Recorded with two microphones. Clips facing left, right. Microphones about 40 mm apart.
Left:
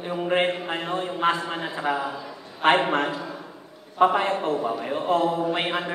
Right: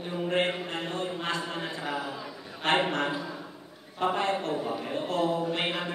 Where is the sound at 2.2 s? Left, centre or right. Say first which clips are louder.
Left 2 dB; centre.